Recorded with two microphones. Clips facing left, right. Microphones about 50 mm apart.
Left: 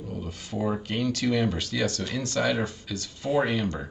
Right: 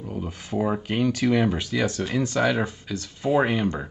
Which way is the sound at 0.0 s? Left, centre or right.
Centre.